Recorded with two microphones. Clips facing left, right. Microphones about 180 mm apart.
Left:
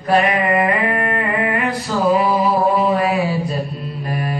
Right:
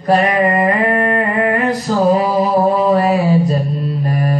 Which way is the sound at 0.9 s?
40° right (ahead or behind).